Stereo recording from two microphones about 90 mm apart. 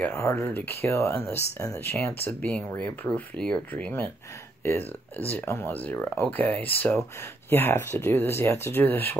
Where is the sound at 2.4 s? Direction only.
10° left (ahead or behind).